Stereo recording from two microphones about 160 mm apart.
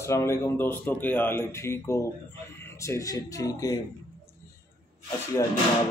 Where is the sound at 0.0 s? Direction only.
15° left (ahead or behind).